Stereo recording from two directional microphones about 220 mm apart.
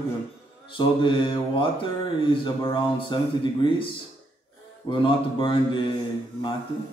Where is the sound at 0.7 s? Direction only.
20° left (ahead or behind).